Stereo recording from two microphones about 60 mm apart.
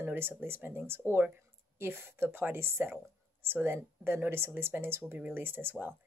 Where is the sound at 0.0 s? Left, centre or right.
Right.